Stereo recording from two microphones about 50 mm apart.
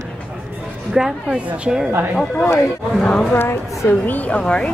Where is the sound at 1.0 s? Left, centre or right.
Centre.